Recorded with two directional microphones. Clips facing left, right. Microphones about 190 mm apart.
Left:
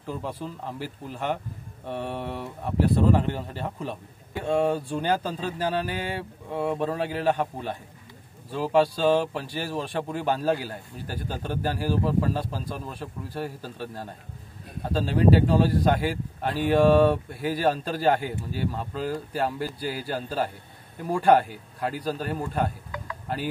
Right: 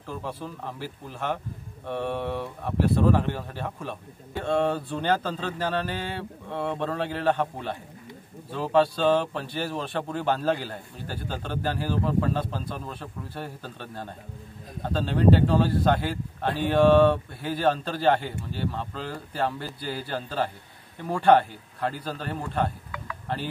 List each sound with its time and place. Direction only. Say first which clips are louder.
0.0 s speech: left 2 dB; 15° left (ahead or behind)